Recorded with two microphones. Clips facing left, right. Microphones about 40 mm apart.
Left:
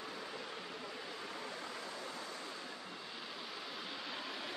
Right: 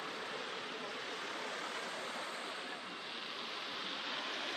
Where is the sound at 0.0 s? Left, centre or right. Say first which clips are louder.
Right 3 dB; right.